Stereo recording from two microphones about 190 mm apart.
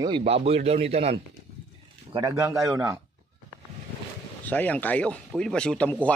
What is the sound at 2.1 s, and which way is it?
Speech, 20° right (ahead or behind).